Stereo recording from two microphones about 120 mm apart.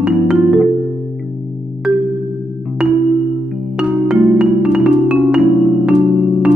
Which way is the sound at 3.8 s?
5° right (ahead or behind).